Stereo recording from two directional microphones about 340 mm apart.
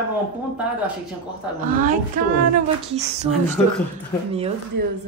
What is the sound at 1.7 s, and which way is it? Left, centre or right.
Speech, right.